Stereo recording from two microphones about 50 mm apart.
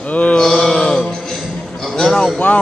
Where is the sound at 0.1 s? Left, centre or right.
Left.